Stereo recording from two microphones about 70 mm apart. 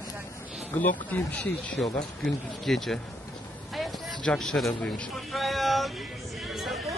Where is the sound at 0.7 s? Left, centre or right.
Left.